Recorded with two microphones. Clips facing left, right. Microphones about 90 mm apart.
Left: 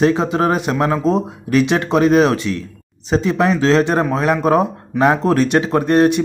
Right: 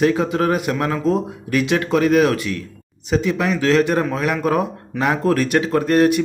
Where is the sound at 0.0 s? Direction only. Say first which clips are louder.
Left 2 dB; 25° left (ahead or behind).